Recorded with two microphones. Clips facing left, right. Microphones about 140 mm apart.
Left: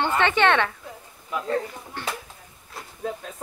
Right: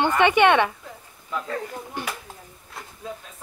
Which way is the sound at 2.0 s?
15° right (ahead or behind).